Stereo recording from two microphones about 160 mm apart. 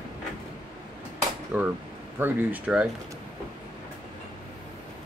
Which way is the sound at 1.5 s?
10° right (ahead or behind).